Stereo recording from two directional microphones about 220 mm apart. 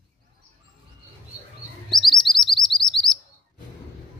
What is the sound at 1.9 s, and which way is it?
Chirp, centre (ahead or behind).